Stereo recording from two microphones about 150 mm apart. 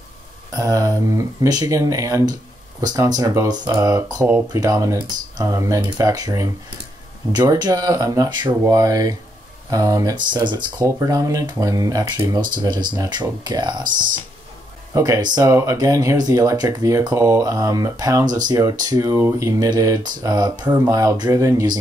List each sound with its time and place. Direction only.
0.6 s speech: 25° right (ahead or behind)